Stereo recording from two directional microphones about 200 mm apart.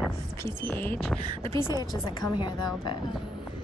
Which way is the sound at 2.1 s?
20° left (ahead or behind).